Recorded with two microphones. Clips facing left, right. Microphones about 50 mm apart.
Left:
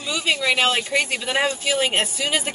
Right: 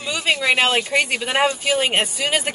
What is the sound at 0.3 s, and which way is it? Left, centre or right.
Speech, right.